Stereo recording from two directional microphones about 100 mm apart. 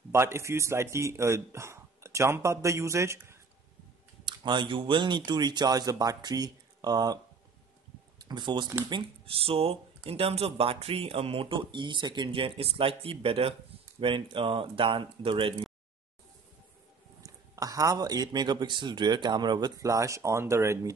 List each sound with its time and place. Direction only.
0.1 s speech: 25° right (ahead or behind)
4.3 s speech: 50° right (ahead or behind)
8.2 s speech: 45° right (ahead or behind)
9.2 s speech: 70° right (ahead or behind)
17.2 s speech: 35° right (ahead or behind)
19.8 s speech: 30° right (ahead or behind)